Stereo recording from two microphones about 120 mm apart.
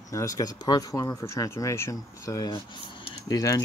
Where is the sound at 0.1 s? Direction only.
30° left (ahead or behind).